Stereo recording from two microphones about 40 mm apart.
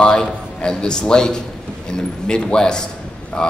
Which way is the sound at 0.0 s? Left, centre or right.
Centre.